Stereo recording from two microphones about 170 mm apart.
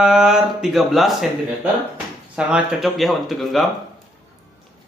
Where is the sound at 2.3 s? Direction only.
5° right (ahead or behind).